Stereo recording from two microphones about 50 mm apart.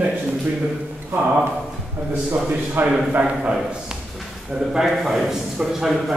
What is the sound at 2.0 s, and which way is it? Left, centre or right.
Speech, right.